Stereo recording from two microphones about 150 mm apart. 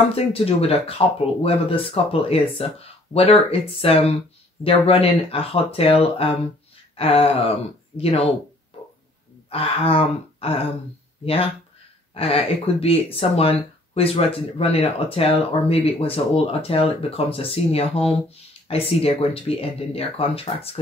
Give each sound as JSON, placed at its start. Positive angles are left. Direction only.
{"t": 0.1, "sound": "speech", "side_deg": 40}
{"t": 8.7, "sound": "music", "side_deg": 40}
{"t": 9.5, "sound": "speech", "side_deg": 35}
{"t": 12.1, "sound": "speech", "side_deg": 40}